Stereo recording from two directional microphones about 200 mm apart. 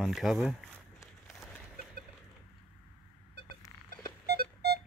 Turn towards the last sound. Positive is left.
turn(degrees=-50)  # may be behind; listen again after turning